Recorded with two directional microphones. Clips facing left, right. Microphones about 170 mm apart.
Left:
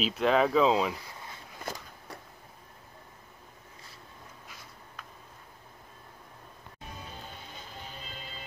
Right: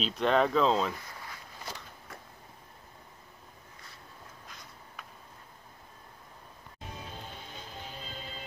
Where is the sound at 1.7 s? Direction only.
50° left (ahead or behind).